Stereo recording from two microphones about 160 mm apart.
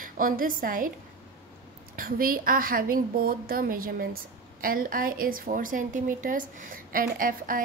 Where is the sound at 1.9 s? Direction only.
65° right (ahead or behind).